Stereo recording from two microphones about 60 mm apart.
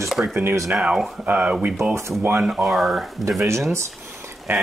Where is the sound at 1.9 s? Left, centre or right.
Right.